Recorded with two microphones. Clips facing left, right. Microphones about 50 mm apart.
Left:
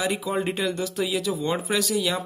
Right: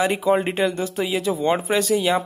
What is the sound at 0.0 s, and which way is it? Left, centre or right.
Speech, right.